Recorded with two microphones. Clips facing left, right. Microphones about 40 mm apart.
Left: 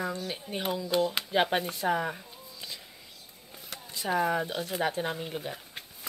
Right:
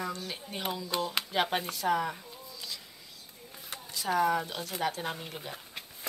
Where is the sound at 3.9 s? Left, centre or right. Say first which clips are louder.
Even; left.